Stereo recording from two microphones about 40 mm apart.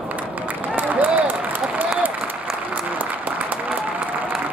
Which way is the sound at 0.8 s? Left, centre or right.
Right.